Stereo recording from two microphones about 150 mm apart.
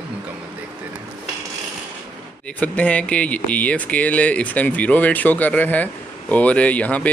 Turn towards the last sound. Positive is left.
turn(degrees=10)  # may be behind; listen again after turning